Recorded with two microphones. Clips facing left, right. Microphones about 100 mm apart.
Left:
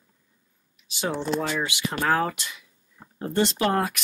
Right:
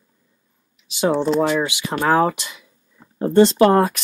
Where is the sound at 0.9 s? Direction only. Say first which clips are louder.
Right 9 dB; 25° right (ahead or behind).